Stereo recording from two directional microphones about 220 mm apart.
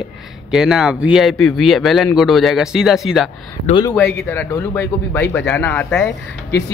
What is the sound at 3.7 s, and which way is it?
Speech, 20° left (ahead or behind).